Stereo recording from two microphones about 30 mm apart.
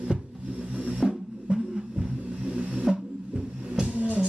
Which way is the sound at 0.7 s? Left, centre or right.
Right.